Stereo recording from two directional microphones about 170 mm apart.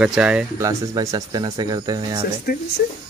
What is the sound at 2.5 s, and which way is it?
Speech, 65° left (ahead or behind).